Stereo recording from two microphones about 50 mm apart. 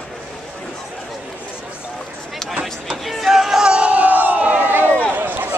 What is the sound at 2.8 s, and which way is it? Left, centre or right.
Music, centre.